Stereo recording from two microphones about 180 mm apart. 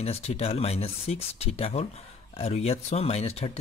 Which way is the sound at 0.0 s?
35° left (ahead or behind).